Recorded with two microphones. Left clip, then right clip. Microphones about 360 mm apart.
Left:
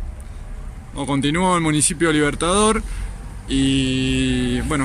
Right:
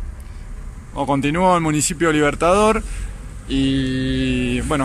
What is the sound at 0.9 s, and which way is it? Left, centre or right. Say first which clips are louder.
Speech: right 2 dB; centre.